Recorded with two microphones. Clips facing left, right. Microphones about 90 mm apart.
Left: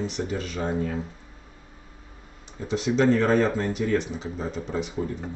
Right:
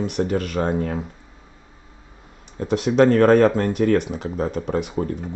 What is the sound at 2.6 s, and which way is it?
Speech, 60° right (ahead or behind).